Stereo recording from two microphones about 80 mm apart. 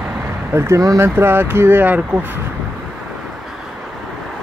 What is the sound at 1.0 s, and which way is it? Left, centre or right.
Speech, right.